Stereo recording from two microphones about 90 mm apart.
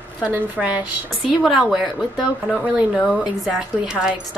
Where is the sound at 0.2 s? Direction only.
15° right (ahead or behind).